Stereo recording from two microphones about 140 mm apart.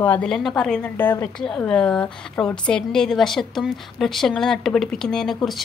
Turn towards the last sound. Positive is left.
turn(degrees=0)  # may be behind; listen again after turning